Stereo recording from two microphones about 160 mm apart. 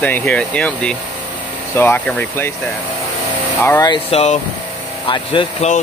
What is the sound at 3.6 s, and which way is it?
Speech, 20° left (ahead or behind).